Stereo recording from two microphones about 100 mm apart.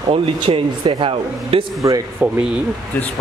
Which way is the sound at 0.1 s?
60° right (ahead or behind).